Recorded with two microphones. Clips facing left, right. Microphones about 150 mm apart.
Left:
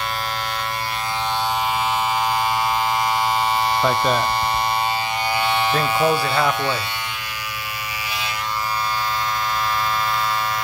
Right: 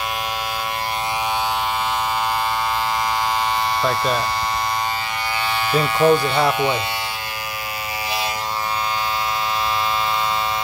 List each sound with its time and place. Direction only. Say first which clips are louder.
3.8 s speech: left 1 dB; 15° left (ahead or behind)
5.9 s speech: right 6 dB; 5° left (ahead or behind)